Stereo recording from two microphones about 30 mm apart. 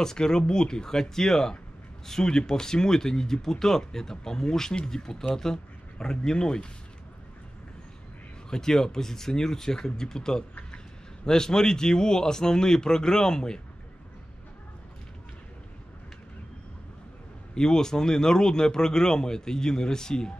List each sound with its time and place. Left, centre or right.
0.0 s speech: left
5.9 s speech: left
8.5 s speech: centre
17.6 s speech: left